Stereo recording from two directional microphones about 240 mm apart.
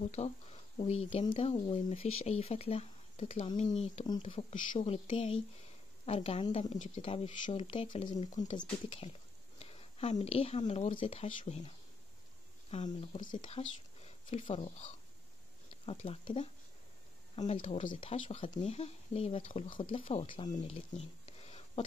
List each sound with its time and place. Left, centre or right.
0.0 s a woman's voice: left
12.7 s a woman's voice: left
20.7 s a sound: left